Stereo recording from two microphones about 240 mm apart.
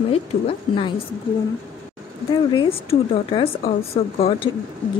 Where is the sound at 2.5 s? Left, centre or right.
Centre.